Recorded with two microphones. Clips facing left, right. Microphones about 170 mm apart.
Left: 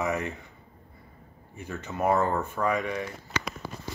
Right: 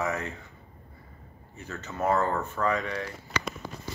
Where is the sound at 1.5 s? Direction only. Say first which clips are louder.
Left 2 dB; 15° left (ahead or behind).